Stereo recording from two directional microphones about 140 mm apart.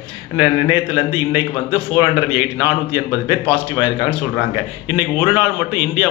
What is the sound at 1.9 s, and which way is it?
A man's voice, 15° right (ahead or behind).